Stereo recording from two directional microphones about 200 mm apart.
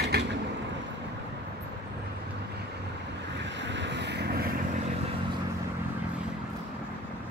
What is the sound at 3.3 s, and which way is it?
Boat, 65° right (ahead or behind).